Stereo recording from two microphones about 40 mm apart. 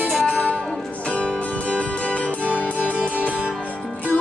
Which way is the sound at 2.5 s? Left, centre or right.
Left.